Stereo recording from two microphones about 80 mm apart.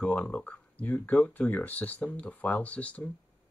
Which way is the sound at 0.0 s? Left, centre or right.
Centre.